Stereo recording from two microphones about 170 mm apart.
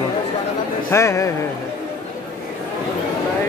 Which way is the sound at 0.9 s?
15° left (ahead or behind).